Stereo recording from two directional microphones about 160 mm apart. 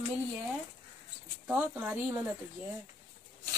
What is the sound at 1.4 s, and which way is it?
Speech, 5° right (ahead or behind).